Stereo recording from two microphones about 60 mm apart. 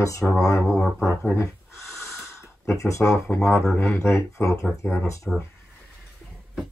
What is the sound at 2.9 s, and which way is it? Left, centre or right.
Speech, left.